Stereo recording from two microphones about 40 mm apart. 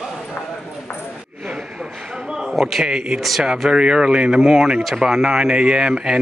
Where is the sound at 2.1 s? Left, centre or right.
Centre.